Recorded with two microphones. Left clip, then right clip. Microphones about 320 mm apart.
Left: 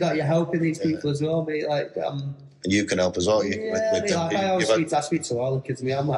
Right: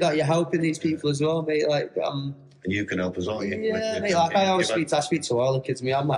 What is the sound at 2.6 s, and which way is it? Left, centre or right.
Speech, centre.